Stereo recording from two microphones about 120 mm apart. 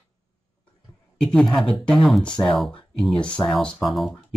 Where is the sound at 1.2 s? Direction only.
5° left (ahead or behind).